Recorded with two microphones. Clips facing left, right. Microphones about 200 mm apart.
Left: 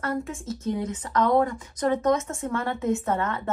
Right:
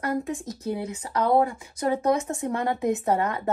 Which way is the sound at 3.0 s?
35° right (ahead or behind).